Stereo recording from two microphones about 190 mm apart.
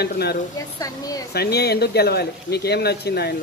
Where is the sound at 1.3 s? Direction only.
55° left (ahead or behind).